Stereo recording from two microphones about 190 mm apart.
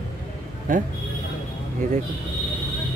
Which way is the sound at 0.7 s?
45° right (ahead or behind).